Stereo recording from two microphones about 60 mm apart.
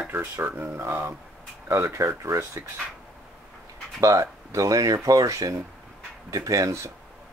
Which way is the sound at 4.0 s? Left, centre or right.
Right.